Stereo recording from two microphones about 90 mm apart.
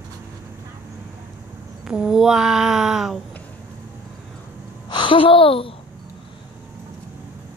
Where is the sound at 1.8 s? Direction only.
10° right (ahead or behind).